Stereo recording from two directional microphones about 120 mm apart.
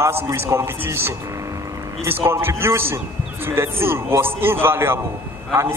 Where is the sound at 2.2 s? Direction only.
20° right (ahead or behind).